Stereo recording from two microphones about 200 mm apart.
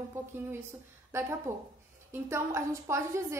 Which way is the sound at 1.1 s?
15° right (ahead or behind).